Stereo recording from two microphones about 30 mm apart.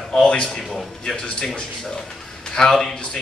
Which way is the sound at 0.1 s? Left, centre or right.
Centre.